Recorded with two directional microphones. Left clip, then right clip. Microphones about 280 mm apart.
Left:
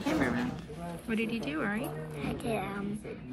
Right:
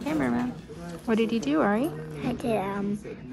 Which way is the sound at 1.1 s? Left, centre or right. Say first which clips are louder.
Right 9 dB; right.